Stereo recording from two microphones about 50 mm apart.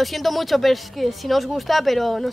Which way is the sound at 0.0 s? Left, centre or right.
Centre.